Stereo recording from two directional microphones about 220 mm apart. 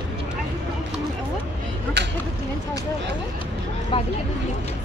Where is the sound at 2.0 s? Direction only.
50° right (ahead or behind).